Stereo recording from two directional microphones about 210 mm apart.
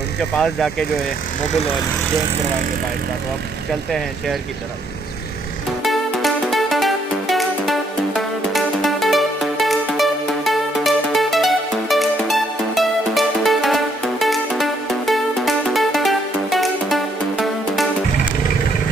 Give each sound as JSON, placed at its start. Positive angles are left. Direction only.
{"t": 0.2, "sound": "speech", "side_deg": 0}
{"t": 5.8, "sound": "music", "side_deg": 0}